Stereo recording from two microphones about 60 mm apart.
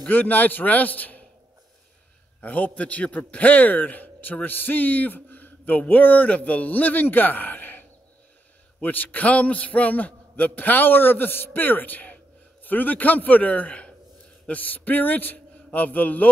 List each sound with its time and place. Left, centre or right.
0.1 s a man's voice: left
2.4 s a man's voice: left
8.8 s a man's voice: left